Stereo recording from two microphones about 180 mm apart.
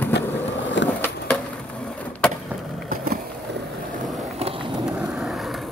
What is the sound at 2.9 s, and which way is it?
Skateboard, 55° right (ahead or behind).